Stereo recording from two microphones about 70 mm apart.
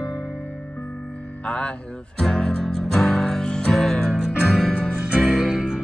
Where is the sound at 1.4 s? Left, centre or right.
Centre.